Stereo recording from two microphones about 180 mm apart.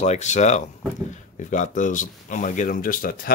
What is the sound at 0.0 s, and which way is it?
Speech, 40° left (ahead or behind).